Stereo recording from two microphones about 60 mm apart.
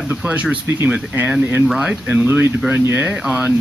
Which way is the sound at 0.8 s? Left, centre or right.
Centre.